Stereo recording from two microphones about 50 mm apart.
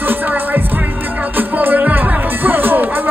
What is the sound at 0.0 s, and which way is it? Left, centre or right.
Music, right.